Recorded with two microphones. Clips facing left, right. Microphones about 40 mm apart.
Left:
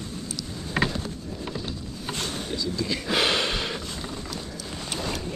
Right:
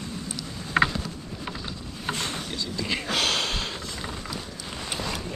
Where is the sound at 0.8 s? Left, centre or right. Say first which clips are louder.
Right 4 dB; centre.